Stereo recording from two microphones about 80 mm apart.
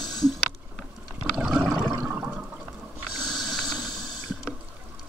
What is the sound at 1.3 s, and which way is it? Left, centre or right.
Water, centre.